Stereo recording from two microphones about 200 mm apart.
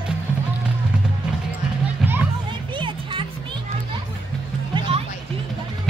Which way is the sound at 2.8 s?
25° right (ahead or behind).